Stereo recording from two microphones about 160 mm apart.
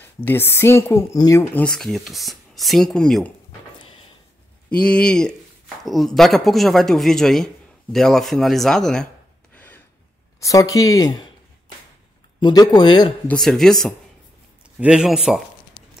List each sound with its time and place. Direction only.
0.0 s speech: 15° left (ahead or behind)
1.5 s speech: 5° left (ahead or behind)
4.6 s speech: 5° left (ahead or behind)
9.5 s a sound: 10° left (ahead or behind)
10.4 s speech: 20° left (ahead or behind)
12.4 s speech: 25° left (ahead or behind)
13.3 s speech: 5° left (ahead or behind)